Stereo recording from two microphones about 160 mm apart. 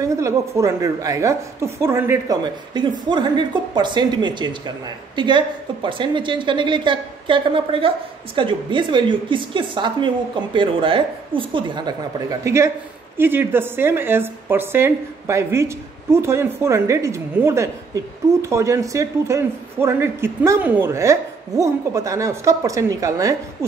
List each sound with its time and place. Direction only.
0.0 s speech: 20° right (ahead or behind)
2.4 s a woman's voice: 30° right (ahead or behind)